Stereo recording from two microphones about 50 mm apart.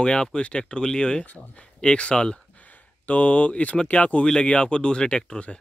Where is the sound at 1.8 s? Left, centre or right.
Left.